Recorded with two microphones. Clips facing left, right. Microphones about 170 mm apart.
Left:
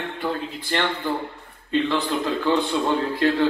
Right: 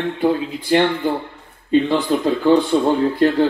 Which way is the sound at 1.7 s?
50° right (ahead or behind).